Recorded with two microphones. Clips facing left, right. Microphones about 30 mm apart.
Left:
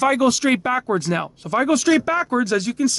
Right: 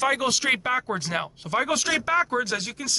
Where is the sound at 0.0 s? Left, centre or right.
Centre.